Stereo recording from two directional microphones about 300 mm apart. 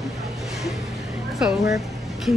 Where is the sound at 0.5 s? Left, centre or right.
Centre.